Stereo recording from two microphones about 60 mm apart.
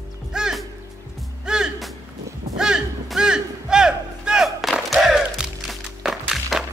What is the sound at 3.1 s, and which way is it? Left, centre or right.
Music, centre.